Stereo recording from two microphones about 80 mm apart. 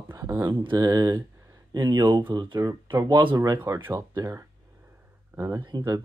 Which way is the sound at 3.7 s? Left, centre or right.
Right.